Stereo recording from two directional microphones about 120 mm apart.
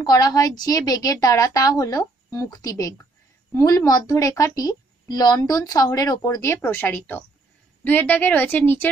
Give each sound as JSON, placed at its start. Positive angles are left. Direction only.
{"t": 0.0, "sound": "a woman's voice", "side_deg": 30}